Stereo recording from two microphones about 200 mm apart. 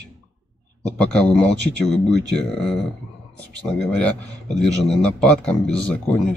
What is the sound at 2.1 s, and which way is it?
Speech, 55° right (ahead or behind).